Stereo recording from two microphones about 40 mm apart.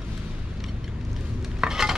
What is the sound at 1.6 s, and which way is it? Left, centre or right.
Dishes, centre.